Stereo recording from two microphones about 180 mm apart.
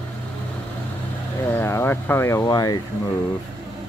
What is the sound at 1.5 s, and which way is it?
Speech, 15° left (ahead or behind).